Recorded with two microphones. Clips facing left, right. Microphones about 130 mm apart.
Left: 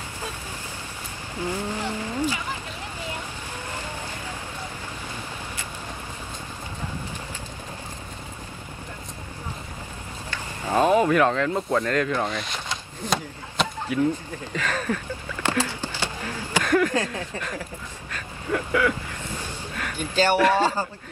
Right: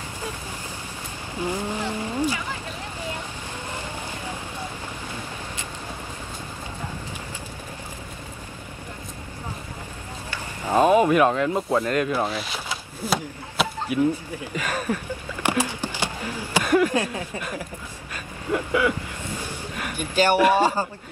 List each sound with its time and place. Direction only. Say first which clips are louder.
1.3 s a sound: right 1 dB; 15° right (ahead or behind)
10.6 s speech: right 2 dB; 15° right (ahead or behind)
18.1 s vehicle: right 1 dB; 15° right (ahead or behind)
19.4 s speech: right 1 dB; 15° right (ahead or behind)